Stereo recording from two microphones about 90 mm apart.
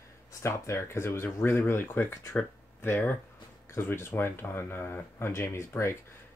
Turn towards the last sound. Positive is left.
turn(degrees=30)  # may be behind; listen again after turning